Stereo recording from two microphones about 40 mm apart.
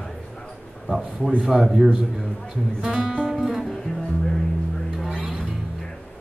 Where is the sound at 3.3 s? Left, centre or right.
Centre.